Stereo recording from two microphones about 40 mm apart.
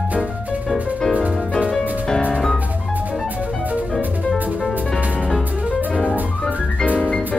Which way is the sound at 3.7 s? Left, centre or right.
Right.